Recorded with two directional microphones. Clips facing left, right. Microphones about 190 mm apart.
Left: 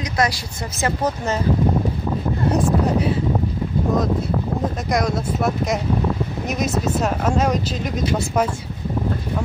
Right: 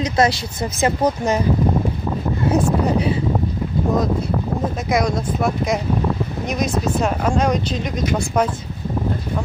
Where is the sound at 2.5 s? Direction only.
Centre (ahead or behind).